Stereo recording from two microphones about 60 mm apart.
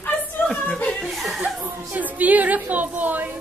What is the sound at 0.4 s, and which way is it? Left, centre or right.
Music, centre.